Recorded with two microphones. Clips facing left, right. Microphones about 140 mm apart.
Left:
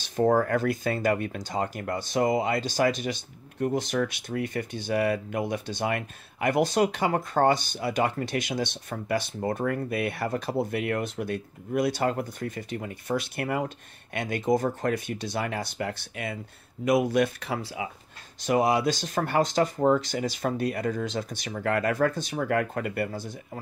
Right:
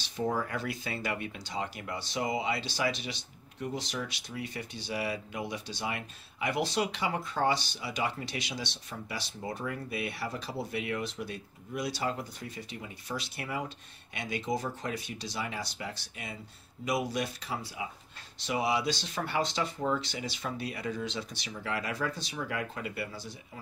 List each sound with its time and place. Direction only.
0.0 s speech: 50° left (ahead or behind); by 17.8 s 65° left (ahead or behind)
18.4 s speech: 50° left (ahead or behind)